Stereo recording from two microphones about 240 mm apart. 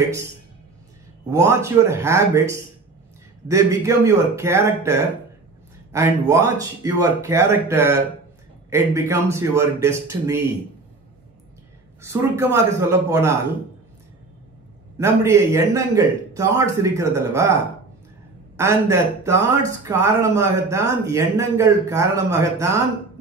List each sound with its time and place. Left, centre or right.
1.3 s speech: centre
12.0 s speech: centre
15.0 s speech: centre
18.6 s speech: centre